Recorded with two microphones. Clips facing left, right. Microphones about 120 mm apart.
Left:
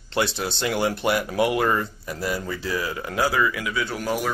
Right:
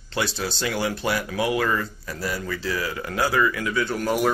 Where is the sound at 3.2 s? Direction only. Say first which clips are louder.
Right 1 dB; 10° left (ahead or behind).